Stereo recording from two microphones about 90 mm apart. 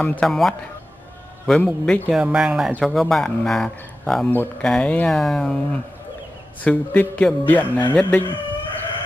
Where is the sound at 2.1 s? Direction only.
5° right (ahead or behind).